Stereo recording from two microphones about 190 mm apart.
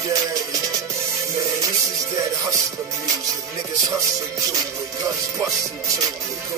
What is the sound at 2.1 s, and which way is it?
Music, 15° right (ahead or behind).